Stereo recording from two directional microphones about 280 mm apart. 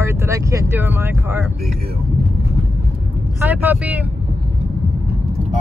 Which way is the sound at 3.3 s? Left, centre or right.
Centre.